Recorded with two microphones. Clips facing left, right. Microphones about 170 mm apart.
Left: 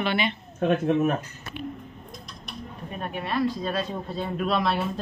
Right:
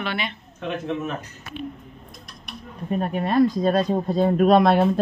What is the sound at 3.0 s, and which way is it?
Speech, 45° right (ahead or behind).